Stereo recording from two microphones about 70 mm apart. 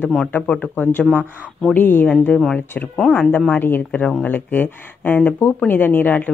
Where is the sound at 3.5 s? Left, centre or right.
Left.